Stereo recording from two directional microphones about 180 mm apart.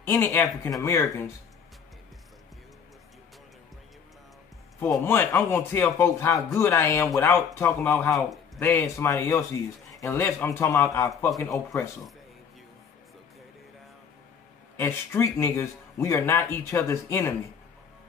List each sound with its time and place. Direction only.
0.0 s a man's voice: 15° left (ahead or behind)
5.0 s a man's voice: 15° left (ahead or behind)
8.1 s speech: centre (ahead or behind)
8.6 s a man's voice: 15° left (ahead or behind)
14.8 s a man's voice: 10° left (ahead or behind)